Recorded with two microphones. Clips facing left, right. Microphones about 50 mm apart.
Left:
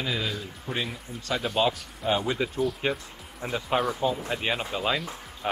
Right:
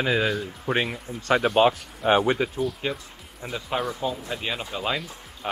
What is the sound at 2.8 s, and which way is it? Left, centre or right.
Speech, centre.